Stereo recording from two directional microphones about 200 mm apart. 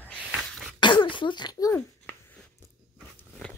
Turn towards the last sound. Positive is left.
turn(degrees=5)  # may be behind; listen again after turning